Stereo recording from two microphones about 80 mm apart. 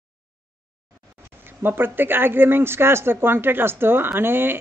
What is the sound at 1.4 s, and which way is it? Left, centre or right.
Speech, right.